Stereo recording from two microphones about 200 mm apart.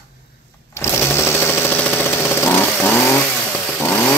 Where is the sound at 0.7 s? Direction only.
10° left (ahead or behind).